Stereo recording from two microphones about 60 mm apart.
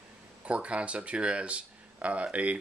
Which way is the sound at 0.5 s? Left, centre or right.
Centre.